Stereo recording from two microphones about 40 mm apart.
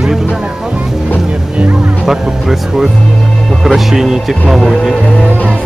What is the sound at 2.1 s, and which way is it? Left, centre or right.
A man's voice, centre.